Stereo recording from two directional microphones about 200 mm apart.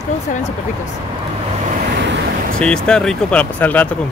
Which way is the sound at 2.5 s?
5° left (ahead or behind).